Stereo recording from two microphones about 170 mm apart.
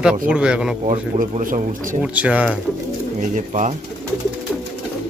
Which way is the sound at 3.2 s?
50° right (ahead or behind).